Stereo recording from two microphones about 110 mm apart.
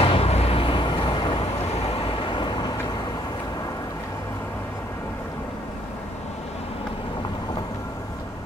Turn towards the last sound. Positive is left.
turn(degrees=40)  # may be behind; listen again after turning